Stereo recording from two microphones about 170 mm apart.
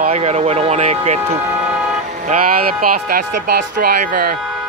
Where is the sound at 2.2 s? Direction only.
60° right (ahead or behind).